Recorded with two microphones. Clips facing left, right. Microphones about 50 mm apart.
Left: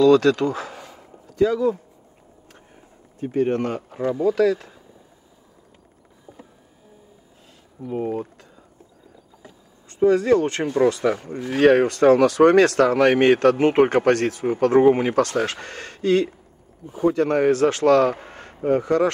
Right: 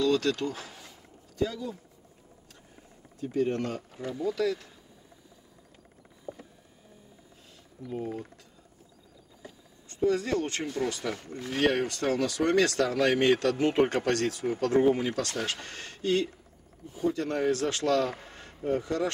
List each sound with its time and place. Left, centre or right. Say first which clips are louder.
0.0 s speech: left 11 dB; left
0.9 s a sound: left 9 dB; left
3.2 s speech: left 7 dB; left
4.3 s speech: left 9 dB; left
6.3 s a sound: right 3 dB; centre
7.8 s speech: left 9 dB; left
10.1 s speech: left 11 dB; left